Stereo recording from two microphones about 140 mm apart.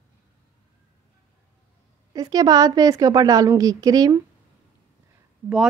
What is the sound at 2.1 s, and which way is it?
A woman's voice, 25° right (ahead or behind).